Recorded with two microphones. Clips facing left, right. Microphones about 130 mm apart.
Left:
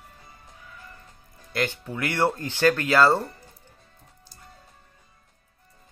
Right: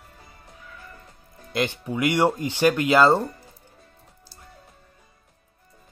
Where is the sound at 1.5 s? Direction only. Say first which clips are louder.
Right 3 dB; 20° right (ahead or behind).